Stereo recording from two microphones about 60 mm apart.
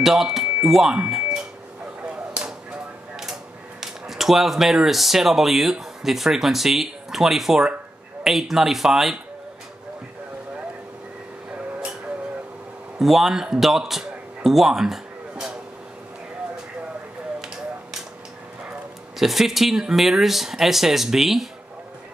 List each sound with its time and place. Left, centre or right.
0.0 s speech: centre
3.8 s speech: centre
13.0 s a man's voice: centre
19.1 s speech: centre